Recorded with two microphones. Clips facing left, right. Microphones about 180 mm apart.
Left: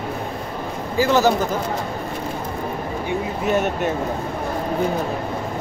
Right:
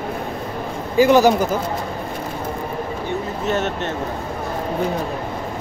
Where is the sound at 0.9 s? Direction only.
15° right (ahead or behind).